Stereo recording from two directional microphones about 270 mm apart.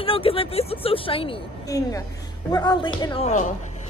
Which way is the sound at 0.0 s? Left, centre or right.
Left.